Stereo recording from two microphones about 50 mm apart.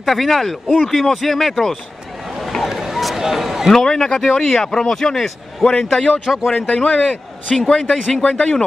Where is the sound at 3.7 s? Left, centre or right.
Centre.